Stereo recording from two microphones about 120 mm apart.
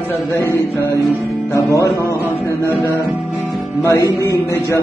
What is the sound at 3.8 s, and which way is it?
Speech, 20° left (ahead or behind).